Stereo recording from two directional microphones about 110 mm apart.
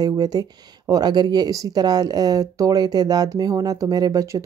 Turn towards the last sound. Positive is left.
turn(degrees=-30)  # may be behind; listen again after turning